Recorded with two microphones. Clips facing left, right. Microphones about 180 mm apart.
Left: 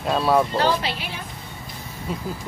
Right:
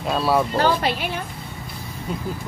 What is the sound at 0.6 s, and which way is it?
Speech, 50° right (ahead or behind).